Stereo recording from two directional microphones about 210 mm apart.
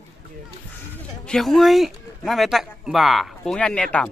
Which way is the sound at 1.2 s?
Centre (ahead or behind).